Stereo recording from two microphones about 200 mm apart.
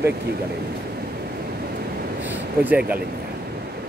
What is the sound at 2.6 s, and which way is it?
Speech, 10° right (ahead or behind).